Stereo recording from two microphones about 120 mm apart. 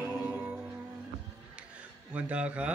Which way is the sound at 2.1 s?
10° right (ahead or behind).